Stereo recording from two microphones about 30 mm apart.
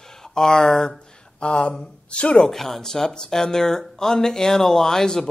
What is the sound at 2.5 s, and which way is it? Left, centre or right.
Speech, centre.